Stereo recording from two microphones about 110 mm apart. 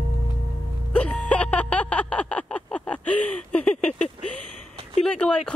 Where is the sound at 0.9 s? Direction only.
10° left (ahead or behind).